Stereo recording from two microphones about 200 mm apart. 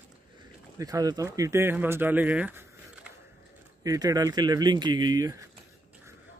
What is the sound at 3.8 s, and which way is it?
Speech, 20° right (ahead or behind).